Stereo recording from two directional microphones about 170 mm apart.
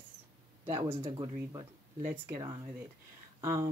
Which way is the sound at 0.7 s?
15° right (ahead or behind).